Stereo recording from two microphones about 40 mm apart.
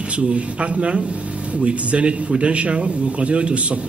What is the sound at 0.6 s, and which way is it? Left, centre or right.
A man's voice, right.